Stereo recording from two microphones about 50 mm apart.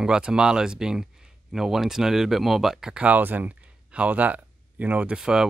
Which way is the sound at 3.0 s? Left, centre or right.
Right.